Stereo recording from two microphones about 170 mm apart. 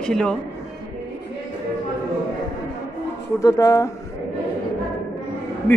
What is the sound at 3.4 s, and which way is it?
Speech, 20° left (ahead or behind).